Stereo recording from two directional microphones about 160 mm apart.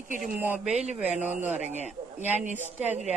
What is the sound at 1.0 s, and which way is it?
A man's voice, 45° right (ahead or behind).